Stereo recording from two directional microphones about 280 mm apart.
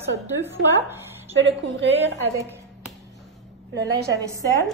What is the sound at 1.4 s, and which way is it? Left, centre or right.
Speech, right.